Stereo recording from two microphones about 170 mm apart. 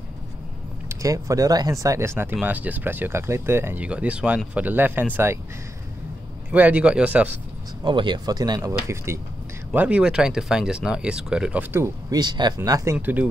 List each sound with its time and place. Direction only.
0.8 s speech: 20° right (ahead or behind)
6.5 s speech: 10° right (ahead or behind)
7.8 s speech: 30° right (ahead or behind)
12.9 s speech: 10° right (ahead or behind)